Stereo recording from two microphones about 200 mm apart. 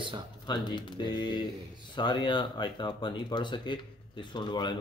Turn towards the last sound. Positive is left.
turn(degrees=20)  # may be behind; listen again after turning